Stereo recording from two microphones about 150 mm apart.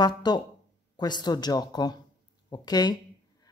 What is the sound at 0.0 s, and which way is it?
Speech, 30° left (ahead or behind).